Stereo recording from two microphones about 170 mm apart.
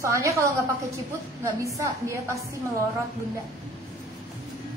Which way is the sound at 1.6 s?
15° right (ahead or behind).